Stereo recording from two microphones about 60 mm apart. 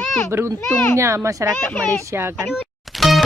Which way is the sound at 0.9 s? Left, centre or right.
Right.